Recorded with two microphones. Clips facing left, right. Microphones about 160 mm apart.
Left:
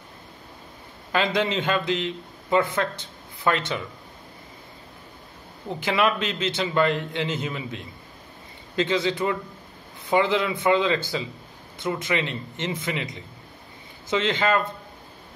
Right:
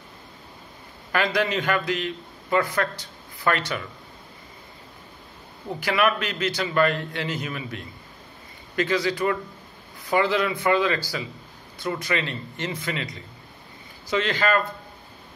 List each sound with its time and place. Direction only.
1.1 s a man's voice: 20° left (ahead or behind)
5.8 s a man's voice: 25° left (ahead or behind)